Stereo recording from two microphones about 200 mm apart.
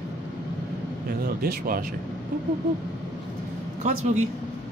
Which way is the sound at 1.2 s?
45° right (ahead or behind).